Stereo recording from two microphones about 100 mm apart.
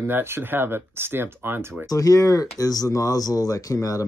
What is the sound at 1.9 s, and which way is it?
Speech, 35° left (ahead or behind).